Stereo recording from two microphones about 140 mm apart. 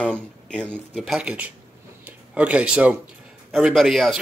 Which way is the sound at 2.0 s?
10° right (ahead or behind).